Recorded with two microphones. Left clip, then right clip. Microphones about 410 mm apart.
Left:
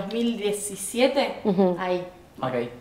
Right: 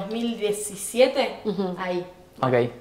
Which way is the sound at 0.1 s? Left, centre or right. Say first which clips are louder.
Even; centre.